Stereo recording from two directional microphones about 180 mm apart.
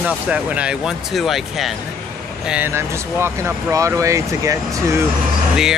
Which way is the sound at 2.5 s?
10° right (ahead or behind).